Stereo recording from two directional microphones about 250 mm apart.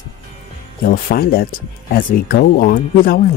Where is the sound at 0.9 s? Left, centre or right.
Left.